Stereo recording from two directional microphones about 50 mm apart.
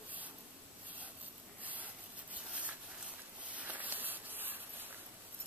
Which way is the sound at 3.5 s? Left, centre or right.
Right.